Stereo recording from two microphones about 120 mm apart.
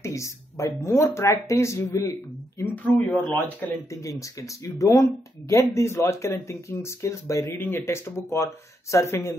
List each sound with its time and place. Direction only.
0.0 s speech: 25° left (ahead or behind)